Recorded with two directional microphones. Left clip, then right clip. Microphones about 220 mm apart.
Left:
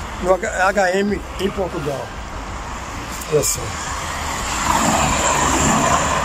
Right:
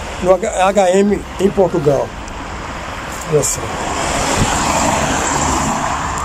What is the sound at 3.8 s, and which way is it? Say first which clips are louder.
Vehicle: right 7 dB; 45° right (ahead or behind).